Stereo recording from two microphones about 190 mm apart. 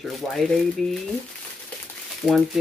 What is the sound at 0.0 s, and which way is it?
Speech, centre (ahead or behind).